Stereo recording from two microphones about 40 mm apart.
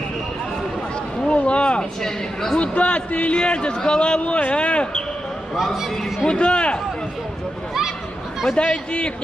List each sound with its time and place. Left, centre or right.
1.2 s a sound: left
2.0 s a sound: centre
2.6 s a man's voice: left
5.8 s a man's voice: centre
6.2 s a man's voice: left
8.6 s a man's voice: left